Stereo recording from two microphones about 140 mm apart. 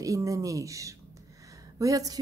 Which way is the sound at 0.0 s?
25° right (ahead or behind).